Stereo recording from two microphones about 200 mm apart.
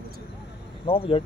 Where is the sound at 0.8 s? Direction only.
25° left (ahead or behind).